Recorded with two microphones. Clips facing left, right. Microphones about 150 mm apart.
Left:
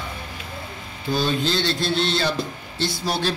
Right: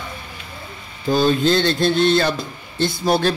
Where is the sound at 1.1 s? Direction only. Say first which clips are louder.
Right 6 dB; 50° right (ahead or behind).